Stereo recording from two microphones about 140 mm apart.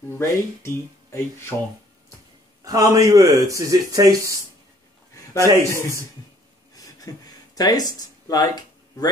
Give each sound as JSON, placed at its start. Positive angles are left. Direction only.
{"t": 0.2, "sound": "speech", "side_deg": 20}
{"t": 2.6, "sound": "speech", "side_deg": -25}
{"t": 5.4, "sound": "speech", "side_deg": -20}
{"t": 6.7, "sound": "a sound", "side_deg": 25}